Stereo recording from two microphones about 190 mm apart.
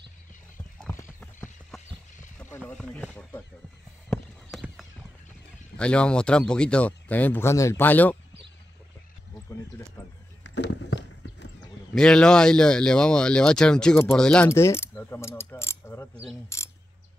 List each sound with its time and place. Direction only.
0.7 s clip-clop: 10° left (ahead or behind)
2.3 s speech: 10° left (ahead or behind)
4.5 s clip-clop: centre (ahead or behind)
5.8 s speech: 5° left (ahead or behind)
10.4 s horse: 65° left (ahead or behind)
11.9 s speech: 5° left (ahead or behind)
16.4 s mechanisms: 15° left (ahead or behind)